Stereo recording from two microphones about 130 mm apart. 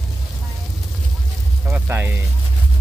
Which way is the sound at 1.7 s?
15° right (ahead or behind).